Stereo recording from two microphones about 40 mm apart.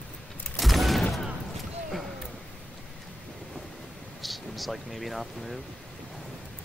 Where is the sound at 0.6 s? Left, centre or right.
Centre.